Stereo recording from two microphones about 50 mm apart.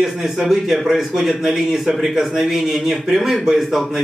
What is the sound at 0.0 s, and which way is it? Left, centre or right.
A man's voice, centre.